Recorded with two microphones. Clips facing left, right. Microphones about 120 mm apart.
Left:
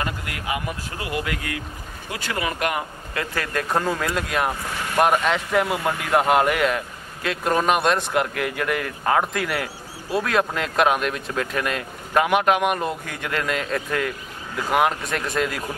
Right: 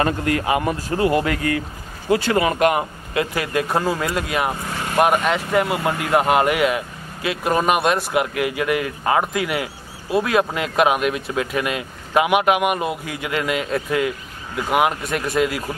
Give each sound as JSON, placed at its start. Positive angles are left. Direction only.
{"t": 0.5, "sound": "speech", "side_deg": -35}
{"t": 3.3, "sound": "speech", "side_deg": -10}